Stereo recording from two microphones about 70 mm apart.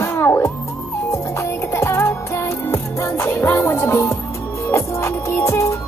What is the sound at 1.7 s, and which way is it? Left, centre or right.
Music, left.